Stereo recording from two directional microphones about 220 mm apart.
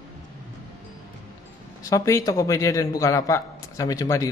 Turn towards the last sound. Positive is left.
turn(degrees=15)  # may be behind; listen again after turning